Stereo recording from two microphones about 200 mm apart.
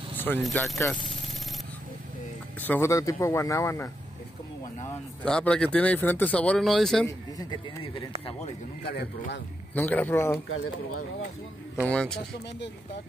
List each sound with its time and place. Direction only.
0.2 s speech: 5° left (ahead or behind)
2.6 s speech: 10° left (ahead or behind)
5.2 s speech: 5° left (ahead or behind)
7.3 s speech: 25° left (ahead or behind)
8.8 s speech: 55° left (ahead or behind)
9.8 s speech: 10° left (ahead or behind)
11.7 s speech: centre (ahead or behind)